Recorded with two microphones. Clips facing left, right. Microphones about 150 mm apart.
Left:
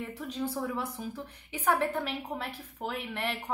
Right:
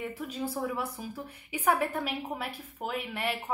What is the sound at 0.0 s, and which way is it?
A woman's voice, 5° right (ahead or behind).